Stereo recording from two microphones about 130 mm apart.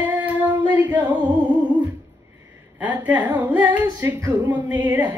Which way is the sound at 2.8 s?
10° right (ahead or behind).